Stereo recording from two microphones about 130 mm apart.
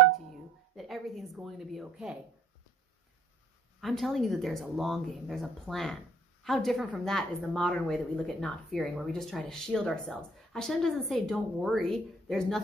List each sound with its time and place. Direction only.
0.7 s speech: centre (ahead or behind)
3.8 s speech: centre (ahead or behind)